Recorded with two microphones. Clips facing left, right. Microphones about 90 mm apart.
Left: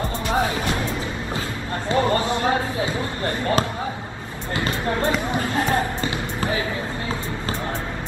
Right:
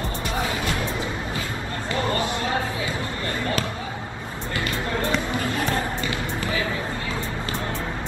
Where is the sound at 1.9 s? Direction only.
30° left (ahead or behind).